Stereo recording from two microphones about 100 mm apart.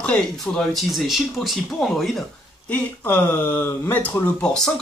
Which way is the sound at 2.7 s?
20° left (ahead or behind).